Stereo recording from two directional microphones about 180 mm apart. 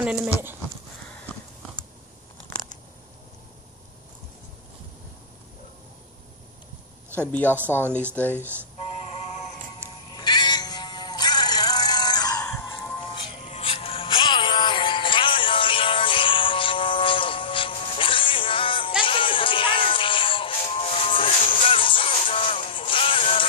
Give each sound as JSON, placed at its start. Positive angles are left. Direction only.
{"t": 0.0, "sound": "speech", "side_deg": -5}
{"t": 7.2, "sound": "speech", "side_deg": 10}
{"t": 9.8, "sound": "music", "side_deg": 25}